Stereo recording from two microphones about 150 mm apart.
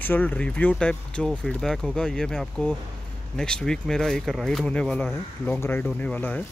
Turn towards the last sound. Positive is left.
turn(degrees=10)  # may be behind; listen again after turning